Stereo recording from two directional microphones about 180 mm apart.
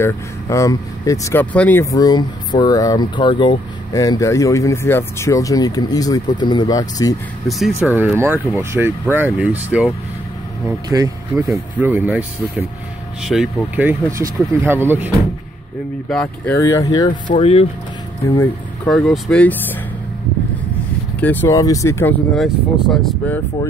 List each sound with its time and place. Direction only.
0.0 s speech: 15° left (ahead or behind)
7.4 s speech: centre (ahead or behind)
10.9 s speech: 20° right (ahead or behind)
11.5 s speech: 10° right (ahead or behind)
16.1 s speech: 5° left (ahead or behind)
16.5 s speech: 15° left (ahead or behind)
17.3 s speech: 35° left (ahead or behind)
19.1 s speech: 5° left (ahead or behind)
21.2 s speech: 10° left (ahead or behind)
22.4 s speech: centre (ahead or behind)